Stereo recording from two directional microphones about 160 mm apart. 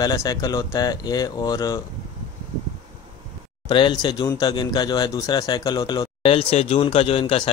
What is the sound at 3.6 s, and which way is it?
Speech, 30° left (ahead or behind).